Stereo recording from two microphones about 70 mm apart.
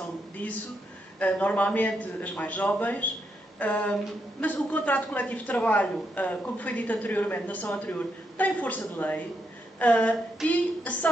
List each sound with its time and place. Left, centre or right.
1.2 s speech: left